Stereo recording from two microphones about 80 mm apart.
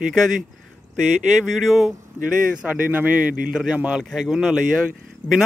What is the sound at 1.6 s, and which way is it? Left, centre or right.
Speech, centre.